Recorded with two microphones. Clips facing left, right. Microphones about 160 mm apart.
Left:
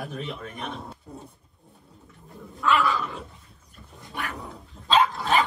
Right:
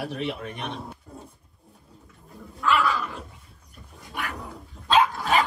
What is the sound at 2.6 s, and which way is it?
Speech, centre (ahead or behind).